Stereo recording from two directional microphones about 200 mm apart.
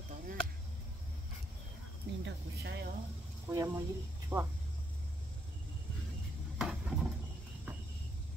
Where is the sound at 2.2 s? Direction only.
55° right (ahead or behind).